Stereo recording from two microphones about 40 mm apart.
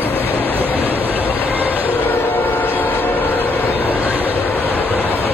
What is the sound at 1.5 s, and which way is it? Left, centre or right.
Vehicle, right.